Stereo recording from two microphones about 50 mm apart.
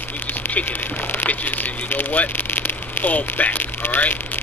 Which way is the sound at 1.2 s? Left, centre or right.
Left.